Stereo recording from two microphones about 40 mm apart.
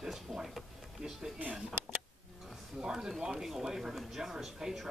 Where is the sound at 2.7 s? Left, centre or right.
Centre.